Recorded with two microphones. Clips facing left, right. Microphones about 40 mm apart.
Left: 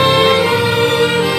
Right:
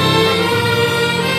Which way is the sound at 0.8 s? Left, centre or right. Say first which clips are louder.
Left 3 dB; left.